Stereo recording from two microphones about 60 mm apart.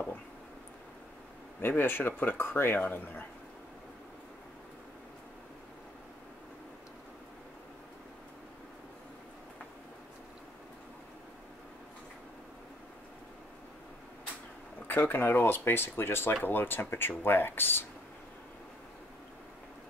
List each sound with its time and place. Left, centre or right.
1.6 s speech: left
14.9 s speech: left